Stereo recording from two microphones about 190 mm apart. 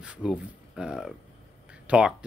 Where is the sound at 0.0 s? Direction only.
5° right (ahead or behind).